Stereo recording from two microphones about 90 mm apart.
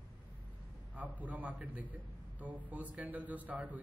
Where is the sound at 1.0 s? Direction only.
20° right (ahead or behind).